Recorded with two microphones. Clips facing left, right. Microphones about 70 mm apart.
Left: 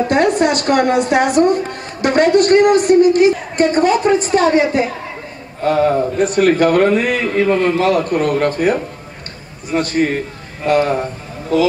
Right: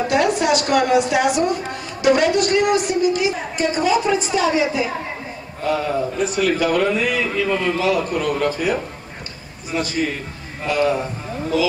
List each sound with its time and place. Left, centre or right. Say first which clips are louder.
0.1 s a woman's voice: left 3 dB; left